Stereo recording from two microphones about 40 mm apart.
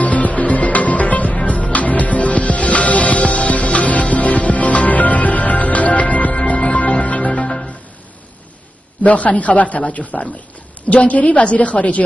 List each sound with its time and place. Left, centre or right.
0.0 s music: left
7.2 s music: centre
9.0 s a man's voice: left